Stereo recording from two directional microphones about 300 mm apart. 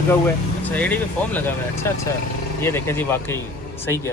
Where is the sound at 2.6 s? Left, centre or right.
Centre.